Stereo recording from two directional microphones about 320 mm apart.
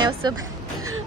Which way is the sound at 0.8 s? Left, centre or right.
Right.